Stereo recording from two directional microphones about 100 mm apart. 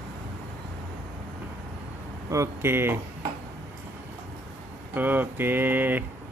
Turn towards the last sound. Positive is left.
turn(degrees=-20)  # may be behind; listen again after turning